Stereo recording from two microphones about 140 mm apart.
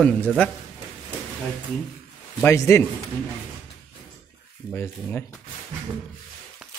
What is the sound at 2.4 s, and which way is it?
Speech, 20° left (ahead or behind).